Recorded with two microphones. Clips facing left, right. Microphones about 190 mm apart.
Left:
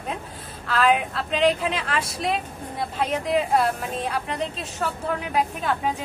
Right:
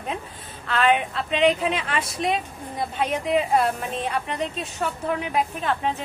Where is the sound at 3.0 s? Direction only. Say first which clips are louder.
Even; 10° right (ahead or behind).